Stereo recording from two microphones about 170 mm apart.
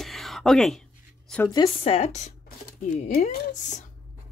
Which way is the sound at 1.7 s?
35° left (ahead or behind).